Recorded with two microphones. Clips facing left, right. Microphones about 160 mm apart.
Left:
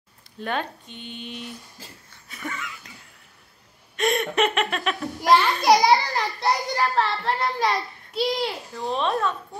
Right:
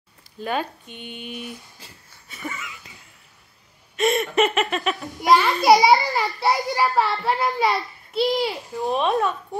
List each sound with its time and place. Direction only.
0.4 s speech: 5° right (ahead or behind)
2.2 s a sound: 5° right (ahead or behind)
3.9 s a child's voice: centre (ahead or behind)
8.7 s speech: 15° right (ahead or behind)